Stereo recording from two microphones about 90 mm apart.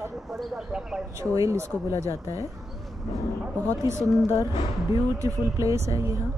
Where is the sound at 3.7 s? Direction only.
35° right (ahead or behind).